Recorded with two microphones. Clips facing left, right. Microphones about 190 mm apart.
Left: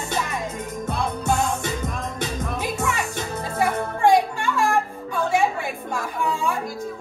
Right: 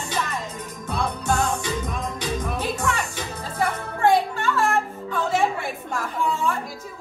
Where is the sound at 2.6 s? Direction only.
15° left (ahead or behind).